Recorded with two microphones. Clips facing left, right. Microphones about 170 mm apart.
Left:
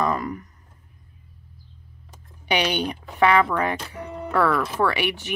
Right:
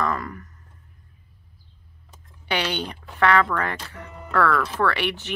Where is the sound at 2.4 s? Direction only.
15° left (ahead or behind).